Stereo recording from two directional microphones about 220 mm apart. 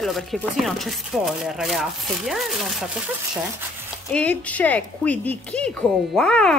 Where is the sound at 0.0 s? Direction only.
Centre (ahead or behind).